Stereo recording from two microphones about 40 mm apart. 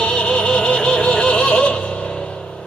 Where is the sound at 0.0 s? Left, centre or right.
Left.